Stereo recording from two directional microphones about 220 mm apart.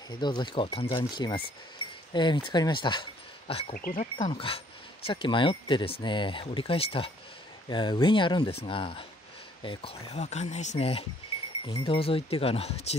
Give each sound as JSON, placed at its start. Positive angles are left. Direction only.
{"t": 0.1, "sound": "speech", "side_deg": 20}
{"t": 3.7, "sound": "speech", "side_deg": 40}